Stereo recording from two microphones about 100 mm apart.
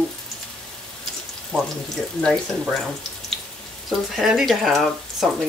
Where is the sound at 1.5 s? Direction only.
10° left (ahead or behind).